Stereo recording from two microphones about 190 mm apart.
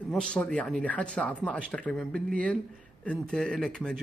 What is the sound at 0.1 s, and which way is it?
A man's voice, 5° left (ahead or behind).